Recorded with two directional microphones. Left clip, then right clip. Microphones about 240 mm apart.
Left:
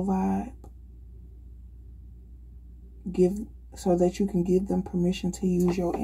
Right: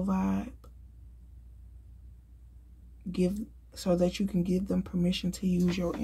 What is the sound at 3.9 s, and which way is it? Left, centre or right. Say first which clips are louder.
Speech: left 4 dB; right.